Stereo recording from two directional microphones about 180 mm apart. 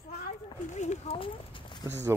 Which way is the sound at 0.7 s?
40° left (ahead or behind).